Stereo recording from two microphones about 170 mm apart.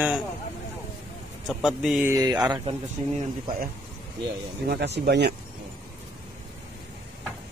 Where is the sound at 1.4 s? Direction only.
Centre (ahead or behind).